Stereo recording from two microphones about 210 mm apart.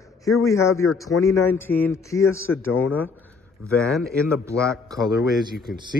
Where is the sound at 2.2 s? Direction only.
80° left.